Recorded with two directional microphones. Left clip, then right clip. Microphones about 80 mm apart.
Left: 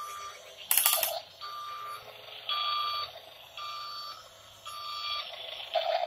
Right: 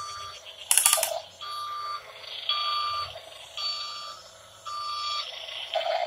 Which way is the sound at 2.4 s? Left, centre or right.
Right.